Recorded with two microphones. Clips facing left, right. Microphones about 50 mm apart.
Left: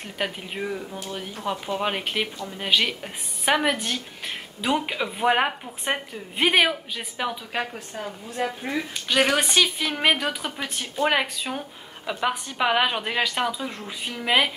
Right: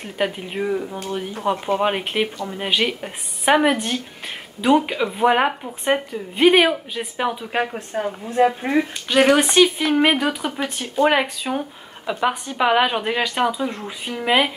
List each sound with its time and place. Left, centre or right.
0.0 s a woman's voice: centre
7.2 s speech: centre
9.1 s a woman's voice: centre